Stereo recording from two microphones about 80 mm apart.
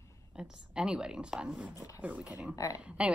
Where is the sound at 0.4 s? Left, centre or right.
Centre.